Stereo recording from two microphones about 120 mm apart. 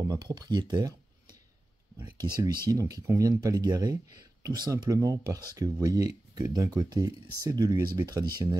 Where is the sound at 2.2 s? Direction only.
40° right (ahead or behind).